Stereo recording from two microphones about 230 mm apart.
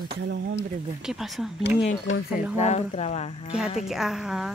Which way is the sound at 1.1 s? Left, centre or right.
Centre.